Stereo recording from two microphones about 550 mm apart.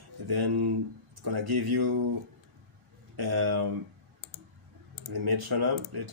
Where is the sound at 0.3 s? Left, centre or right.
Right.